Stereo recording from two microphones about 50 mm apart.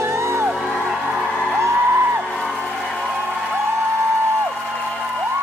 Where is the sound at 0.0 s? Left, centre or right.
Right.